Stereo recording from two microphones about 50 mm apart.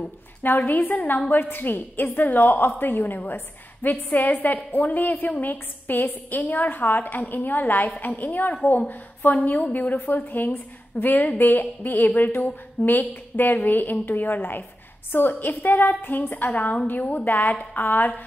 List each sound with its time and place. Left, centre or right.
0.4 s a woman's voice: left